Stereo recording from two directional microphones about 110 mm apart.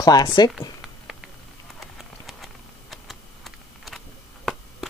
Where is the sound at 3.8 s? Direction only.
Centre (ahead or behind).